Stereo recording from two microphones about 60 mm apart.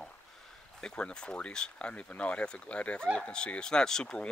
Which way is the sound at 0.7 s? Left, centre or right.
Centre.